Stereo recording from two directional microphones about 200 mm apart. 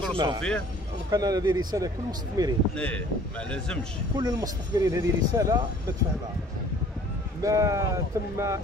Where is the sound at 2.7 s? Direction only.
5° left (ahead or behind).